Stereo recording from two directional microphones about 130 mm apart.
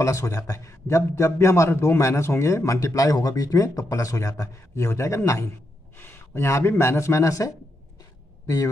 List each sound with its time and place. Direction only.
0.0 s a man's voice: 25° left (ahead or behind)